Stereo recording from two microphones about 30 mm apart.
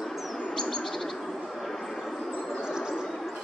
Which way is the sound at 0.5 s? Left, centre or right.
Centre.